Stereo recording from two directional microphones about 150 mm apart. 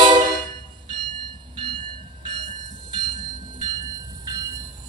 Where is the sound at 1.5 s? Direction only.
35° right (ahead or behind).